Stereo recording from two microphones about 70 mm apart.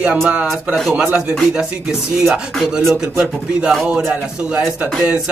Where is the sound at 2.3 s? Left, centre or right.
Centre.